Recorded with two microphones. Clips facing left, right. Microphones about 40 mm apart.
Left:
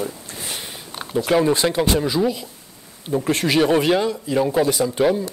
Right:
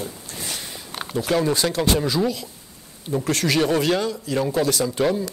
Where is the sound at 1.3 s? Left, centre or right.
Centre.